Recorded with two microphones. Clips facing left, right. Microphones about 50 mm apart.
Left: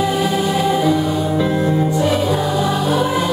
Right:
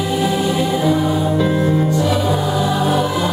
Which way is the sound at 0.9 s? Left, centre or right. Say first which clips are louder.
Right 1 dB; centre.